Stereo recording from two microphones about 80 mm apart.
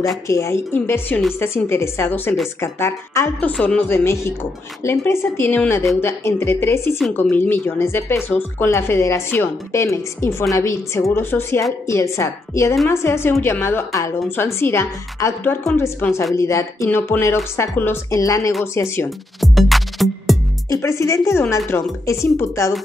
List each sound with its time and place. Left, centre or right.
0.3 s a woman's voice: left
0.8 s a woman's voice: left
3.3 s speech: centre
4.0 s a woman's voice: left
18.1 s a woman's voice: left
19.0 s music: centre
20.7 s a woman's voice: left